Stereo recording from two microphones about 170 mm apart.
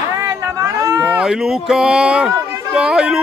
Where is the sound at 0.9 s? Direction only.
5° right (ahead or behind).